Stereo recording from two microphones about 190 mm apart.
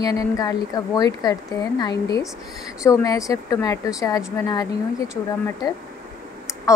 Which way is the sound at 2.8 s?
15° left (ahead or behind).